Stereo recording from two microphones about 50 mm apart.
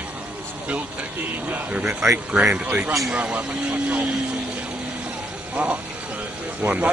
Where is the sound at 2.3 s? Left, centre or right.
Right.